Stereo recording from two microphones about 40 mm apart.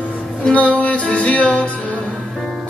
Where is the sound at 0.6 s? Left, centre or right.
Left.